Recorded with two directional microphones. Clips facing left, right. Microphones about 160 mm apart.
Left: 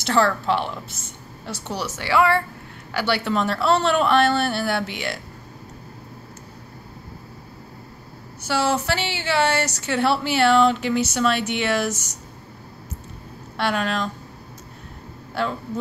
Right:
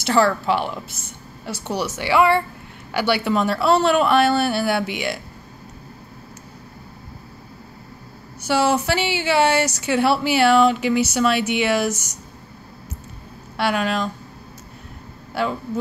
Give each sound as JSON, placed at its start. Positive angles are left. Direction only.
{"t": 0.0, "sound": "a woman's voice", "side_deg": -5}
{"t": 8.4, "sound": "a woman's voice", "side_deg": -15}
{"t": 13.6, "sound": "a woman's voice", "side_deg": -5}
{"t": 15.3, "sound": "a woman's voice", "side_deg": -10}